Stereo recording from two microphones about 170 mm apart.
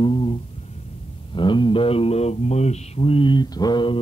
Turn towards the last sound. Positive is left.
turn(degrees=30)  # may be behind; listen again after turning